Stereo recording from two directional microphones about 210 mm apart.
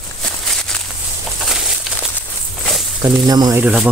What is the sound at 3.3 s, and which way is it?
Speech, 20° right (ahead or behind).